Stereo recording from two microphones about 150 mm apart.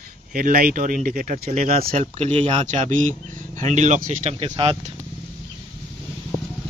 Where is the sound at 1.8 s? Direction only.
45° right (ahead or behind).